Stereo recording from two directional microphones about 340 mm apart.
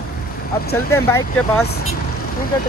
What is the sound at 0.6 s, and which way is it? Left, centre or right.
Speech, left.